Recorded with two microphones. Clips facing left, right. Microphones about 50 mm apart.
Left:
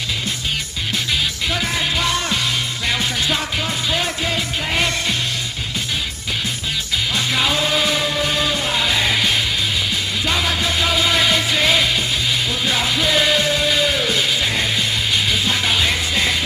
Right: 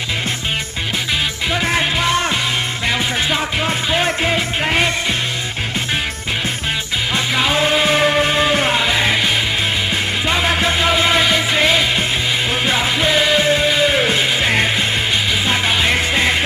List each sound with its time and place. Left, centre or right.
1.6 s music: right
2.9 s music: centre
3.9 s music: right
7.5 s music: right
8.0 s music: right
8.3 s music: right
8.7 s music: right
11.1 s music: centre
13.9 s music: right
15.4 s music: right